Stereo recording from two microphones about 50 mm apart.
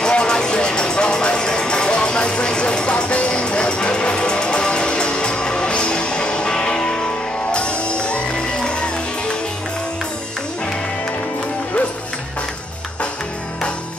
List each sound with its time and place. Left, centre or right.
0.0 s music: centre